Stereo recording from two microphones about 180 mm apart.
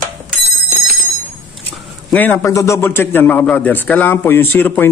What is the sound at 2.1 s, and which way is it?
A man's voice, 10° left (ahead or behind).